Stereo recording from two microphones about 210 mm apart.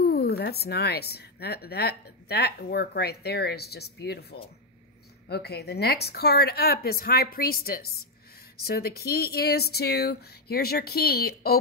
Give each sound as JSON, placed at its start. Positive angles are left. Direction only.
{"t": 0.0, "sound": "a woman's voice", "side_deg": 50}